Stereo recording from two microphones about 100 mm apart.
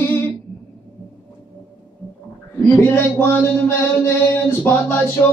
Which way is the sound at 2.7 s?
25° left (ahead or behind).